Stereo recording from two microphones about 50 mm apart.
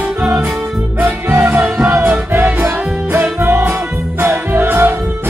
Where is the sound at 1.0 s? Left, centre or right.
Right.